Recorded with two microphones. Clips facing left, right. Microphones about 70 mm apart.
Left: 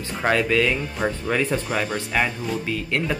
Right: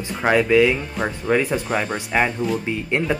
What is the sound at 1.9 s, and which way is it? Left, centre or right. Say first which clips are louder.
Speech: right 3 dB; centre.